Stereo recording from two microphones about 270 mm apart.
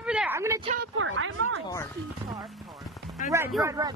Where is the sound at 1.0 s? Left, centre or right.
Right.